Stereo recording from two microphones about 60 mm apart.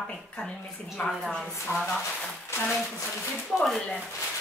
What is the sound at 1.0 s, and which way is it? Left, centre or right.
Speech, centre.